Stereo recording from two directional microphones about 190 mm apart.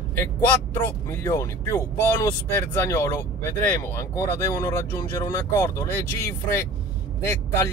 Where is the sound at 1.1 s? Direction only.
15° left (ahead or behind).